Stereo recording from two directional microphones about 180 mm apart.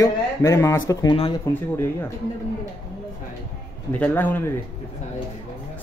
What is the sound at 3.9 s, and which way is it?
Speech, 10° left (ahead or behind).